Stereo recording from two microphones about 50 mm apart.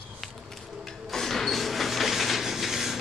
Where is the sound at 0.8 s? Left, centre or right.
Centre.